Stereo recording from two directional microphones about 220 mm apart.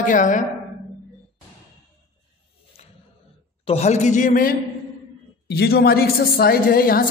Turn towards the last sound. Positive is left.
turn(degrees=40)  # may be behind; listen again after turning